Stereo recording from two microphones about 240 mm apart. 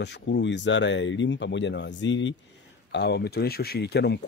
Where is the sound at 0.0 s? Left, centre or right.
Left.